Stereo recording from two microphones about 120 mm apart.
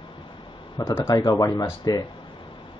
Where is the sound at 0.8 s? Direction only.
35° left (ahead or behind).